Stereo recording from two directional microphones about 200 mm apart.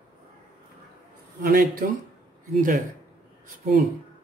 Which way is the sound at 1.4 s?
45° right (ahead or behind).